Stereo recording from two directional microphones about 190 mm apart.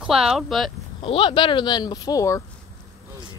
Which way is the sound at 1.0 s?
25° left (ahead or behind).